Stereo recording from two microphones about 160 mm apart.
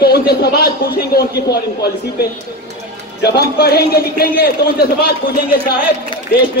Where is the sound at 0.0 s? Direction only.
85° left.